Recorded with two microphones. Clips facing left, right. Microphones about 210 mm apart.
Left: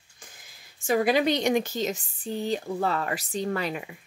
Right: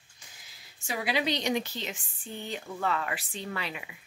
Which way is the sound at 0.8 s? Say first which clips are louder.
Left 8 dB; 45° left (ahead or behind).